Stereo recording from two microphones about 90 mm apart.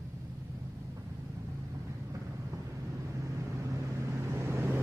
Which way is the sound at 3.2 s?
35° right (ahead or behind).